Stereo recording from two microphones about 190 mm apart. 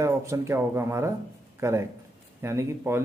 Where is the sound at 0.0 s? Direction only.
15° right (ahead or behind).